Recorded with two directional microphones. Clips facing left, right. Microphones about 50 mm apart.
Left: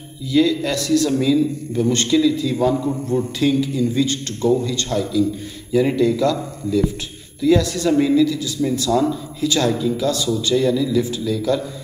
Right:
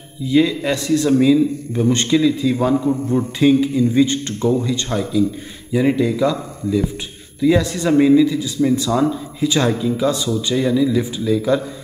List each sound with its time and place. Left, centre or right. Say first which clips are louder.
0.3 s speech: right 1 dB; centre